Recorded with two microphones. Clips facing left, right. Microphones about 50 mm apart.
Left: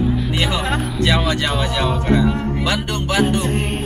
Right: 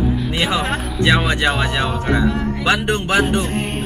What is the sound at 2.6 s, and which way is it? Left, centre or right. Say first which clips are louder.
Music: right 4 dB; right.